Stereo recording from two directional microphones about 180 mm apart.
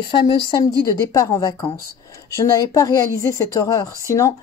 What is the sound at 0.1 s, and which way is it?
Speech, 25° left (ahead or behind).